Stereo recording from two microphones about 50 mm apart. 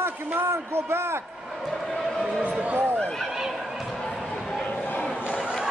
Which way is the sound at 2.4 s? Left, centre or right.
Right.